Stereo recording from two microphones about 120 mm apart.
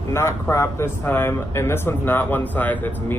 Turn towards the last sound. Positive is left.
turn(degrees=15)  # may be behind; listen again after turning